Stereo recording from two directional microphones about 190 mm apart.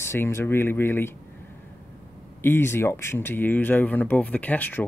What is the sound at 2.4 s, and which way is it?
Speech, 10° left (ahead or behind).